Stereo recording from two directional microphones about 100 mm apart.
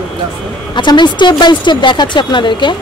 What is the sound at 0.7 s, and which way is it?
Speech, 50° left (ahead or behind).